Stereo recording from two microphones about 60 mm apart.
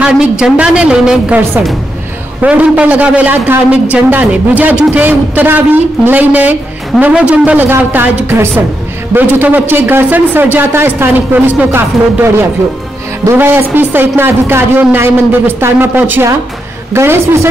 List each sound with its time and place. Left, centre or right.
0.0 s a woman's voice: centre
2.4 s a woman's voice: right
7.6 s a man's voice: right
11.7 s a man's voice: right